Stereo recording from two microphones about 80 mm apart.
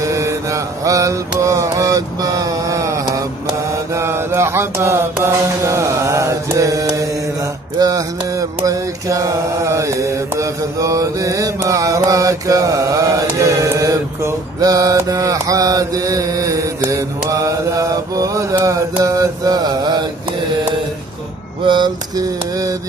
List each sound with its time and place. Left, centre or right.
0.0 s mantra: right
21.6 s a sound: right
22.1 s mantra: right